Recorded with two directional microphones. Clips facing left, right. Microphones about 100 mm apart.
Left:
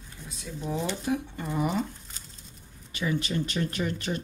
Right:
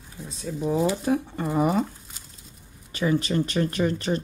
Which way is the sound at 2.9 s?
40° right (ahead or behind).